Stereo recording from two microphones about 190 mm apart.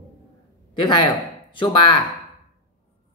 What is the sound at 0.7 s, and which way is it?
A man's voice, 25° left (ahead or behind).